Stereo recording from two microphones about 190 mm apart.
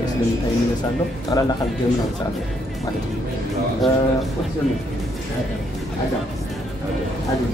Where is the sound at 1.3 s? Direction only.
20° left (ahead or behind).